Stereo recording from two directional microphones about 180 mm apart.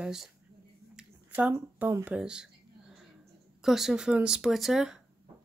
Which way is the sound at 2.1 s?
5° right (ahead or behind).